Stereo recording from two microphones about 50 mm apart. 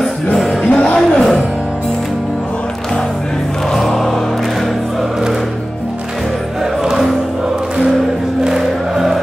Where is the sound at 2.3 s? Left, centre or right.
Centre.